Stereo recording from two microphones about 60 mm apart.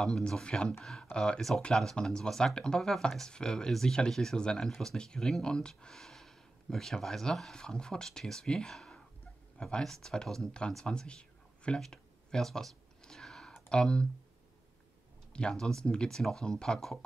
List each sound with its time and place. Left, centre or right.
0.0 s speech: centre
10.7 s a sound: centre
13.7 s speech: centre
15.3 s speech: centre